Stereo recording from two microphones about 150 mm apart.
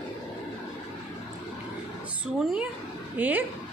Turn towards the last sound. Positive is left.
turn(degrees=-10)  # may be behind; listen again after turning